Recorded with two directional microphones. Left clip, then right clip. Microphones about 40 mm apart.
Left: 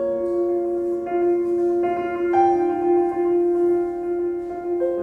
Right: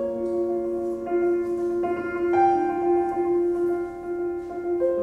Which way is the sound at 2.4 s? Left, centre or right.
Left.